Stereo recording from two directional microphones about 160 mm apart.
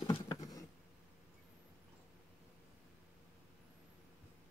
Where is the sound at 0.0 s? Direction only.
30° left (ahead or behind).